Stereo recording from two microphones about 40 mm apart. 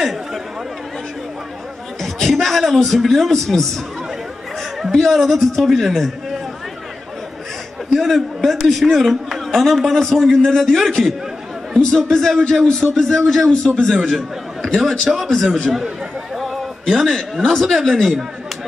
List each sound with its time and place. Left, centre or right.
0.0 s chatter: centre
2.0 s a man's voice: centre
5.1 s a man's voice: centre
7.9 s a man's voice: centre
14.8 s a man's voice: centre
16.8 s a man's voice: centre
17.6 s a man's voice: centre